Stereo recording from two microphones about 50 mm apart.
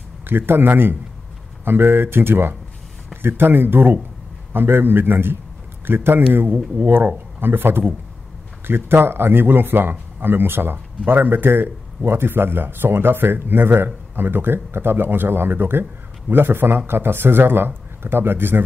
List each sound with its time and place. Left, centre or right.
0.3 s speech: right